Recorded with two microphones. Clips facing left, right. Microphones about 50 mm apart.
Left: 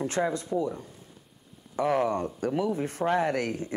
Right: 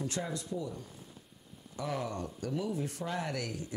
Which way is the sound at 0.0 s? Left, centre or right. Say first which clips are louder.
Left 9 dB; left.